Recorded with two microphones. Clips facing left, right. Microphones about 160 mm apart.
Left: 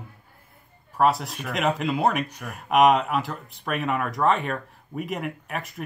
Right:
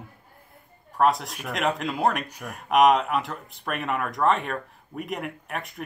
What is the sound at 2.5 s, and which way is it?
Speech, centre (ahead or behind).